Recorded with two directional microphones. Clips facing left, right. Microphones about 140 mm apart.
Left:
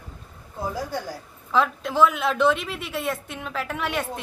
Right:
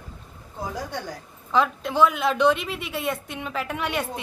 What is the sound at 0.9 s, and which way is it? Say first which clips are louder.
A woman's voice: left 2 dB; centre (ahead or behind).